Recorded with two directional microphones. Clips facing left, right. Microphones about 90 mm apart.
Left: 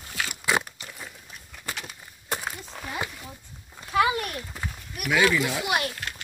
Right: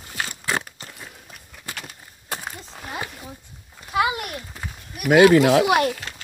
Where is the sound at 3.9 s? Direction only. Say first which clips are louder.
Even; 20° right (ahead or behind).